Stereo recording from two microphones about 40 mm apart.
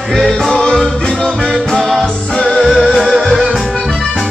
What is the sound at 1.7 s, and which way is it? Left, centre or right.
Music, centre.